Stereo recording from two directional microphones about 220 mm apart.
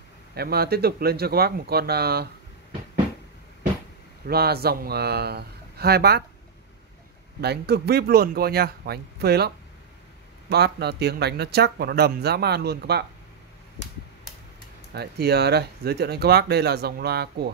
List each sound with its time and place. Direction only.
0.3 s speech: 45° right (ahead or behind)
4.3 s speech: 45° right (ahead or behind)
7.4 s speech: 45° right (ahead or behind)
10.5 s speech: 50° right (ahead or behind)
15.0 s speech: 45° right (ahead or behind)